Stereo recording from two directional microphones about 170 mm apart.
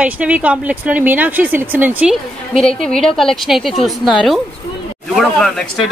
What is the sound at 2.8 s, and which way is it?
A woman's voice, 5° left (ahead or behind).